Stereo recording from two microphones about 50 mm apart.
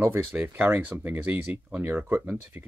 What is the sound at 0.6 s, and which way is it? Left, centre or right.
Speech, right.